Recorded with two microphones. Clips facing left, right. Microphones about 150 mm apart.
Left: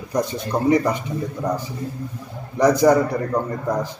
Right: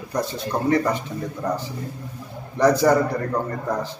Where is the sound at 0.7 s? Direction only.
15° left (ahead or behind).